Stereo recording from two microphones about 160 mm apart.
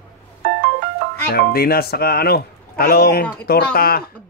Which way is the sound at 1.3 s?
75° left (ahead or behind).